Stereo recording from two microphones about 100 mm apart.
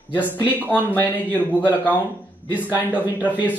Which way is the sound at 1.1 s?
15° left (ahead or behind).